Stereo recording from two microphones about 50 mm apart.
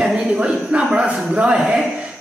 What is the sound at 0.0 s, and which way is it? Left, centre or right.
A man's voice, centre.